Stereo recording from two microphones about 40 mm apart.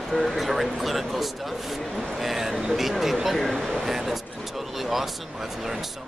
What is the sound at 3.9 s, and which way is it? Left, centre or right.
Speech, centre.